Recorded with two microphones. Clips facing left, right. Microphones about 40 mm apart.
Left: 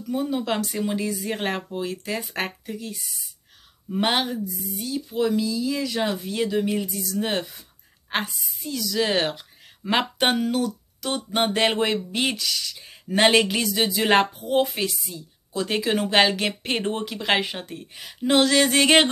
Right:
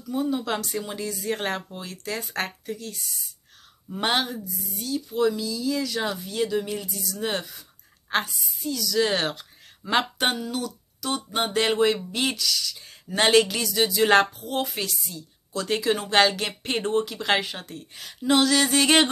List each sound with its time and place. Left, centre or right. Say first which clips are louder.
0.3 s a woman's voice: left 1 dB; centre
9.0 s speech: left 4 dB; centre
10.3 s speech: left 6 dB; left